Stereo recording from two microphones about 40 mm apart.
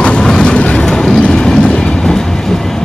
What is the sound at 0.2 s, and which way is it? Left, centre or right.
Vehicle, centre.